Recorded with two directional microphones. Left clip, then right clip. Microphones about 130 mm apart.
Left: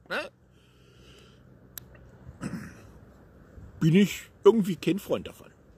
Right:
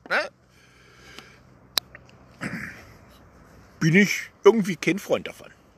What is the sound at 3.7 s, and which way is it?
A man's voice, 35° left (ahead or behind).